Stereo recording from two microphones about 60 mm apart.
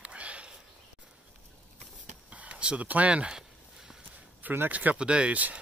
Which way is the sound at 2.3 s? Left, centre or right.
Right.